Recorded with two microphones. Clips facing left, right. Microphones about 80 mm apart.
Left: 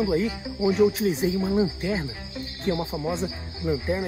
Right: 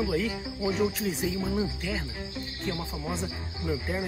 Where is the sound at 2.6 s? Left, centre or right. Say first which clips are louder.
Left 8 dB; left.